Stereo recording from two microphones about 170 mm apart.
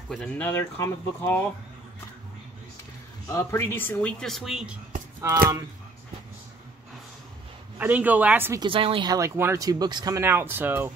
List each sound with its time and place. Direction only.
0.1 s speech: 10° left (ahead or behind)
3.3 s speech: 15° left (ahead or behind); by 4.7 s centre (ahead or behind)
7.8 s speech: 10° right (ahead or behind)
8.5 s a woman's voice: 30° right (ahead or behind)
9.1 s speech: 15° right (ahead or behind)